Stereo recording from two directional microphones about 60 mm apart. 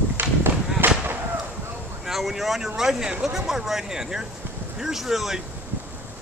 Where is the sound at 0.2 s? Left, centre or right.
Right.